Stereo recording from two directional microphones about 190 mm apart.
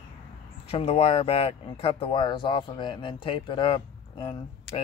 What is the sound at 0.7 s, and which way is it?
Speech, 30° left (ahead or behind).